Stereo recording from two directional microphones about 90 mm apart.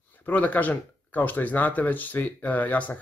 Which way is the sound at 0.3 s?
15° left (ahead or behind).